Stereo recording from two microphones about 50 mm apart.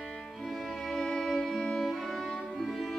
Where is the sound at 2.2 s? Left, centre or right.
Centre.